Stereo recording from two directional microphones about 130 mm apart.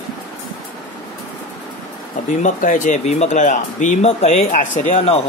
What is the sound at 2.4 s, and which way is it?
Speech, 80° left.